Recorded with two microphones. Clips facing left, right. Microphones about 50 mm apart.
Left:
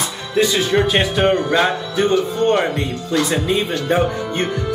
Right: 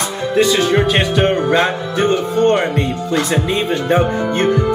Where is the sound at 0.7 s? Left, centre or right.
Centre.